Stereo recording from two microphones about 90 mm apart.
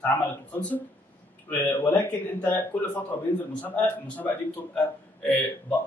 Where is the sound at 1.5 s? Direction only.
25° left (ahead or behind).